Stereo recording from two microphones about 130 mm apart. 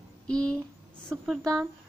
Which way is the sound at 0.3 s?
5° left (ahead or behind).